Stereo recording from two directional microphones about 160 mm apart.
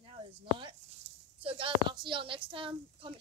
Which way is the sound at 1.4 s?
35° right (ahead or behind).